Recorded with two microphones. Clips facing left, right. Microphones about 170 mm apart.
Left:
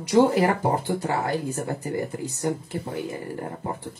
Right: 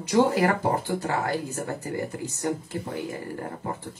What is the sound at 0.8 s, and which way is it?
Speech, 20° left (ahead or behind).